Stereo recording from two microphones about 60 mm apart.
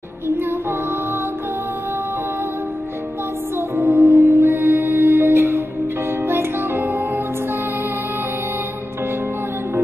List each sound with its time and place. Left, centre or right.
0.4 s music: right
3.5 s music: right